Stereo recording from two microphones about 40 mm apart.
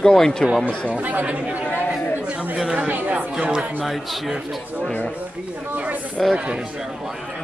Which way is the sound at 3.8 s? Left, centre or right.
Centre.